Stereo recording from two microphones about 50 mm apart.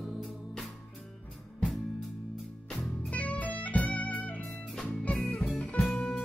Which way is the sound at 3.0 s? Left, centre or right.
Left.